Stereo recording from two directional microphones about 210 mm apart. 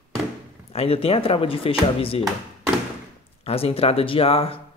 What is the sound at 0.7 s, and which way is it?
Speech, 30° left (ahead or behind).